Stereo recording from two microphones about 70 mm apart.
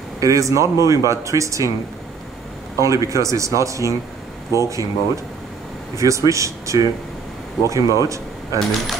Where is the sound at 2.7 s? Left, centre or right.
Right.